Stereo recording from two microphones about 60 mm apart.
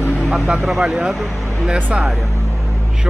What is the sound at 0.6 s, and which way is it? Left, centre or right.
Speech, centre.